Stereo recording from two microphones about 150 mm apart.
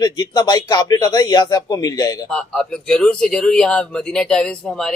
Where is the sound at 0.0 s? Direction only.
25° left (ahead or behind).